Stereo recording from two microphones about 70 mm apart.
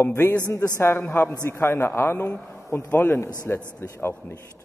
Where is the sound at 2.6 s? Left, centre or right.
Left.